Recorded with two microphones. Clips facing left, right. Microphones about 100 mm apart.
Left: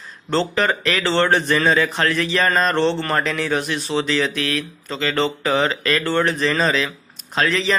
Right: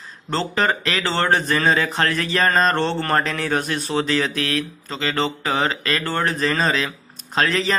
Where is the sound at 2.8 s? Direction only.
45° right (ahead or behind).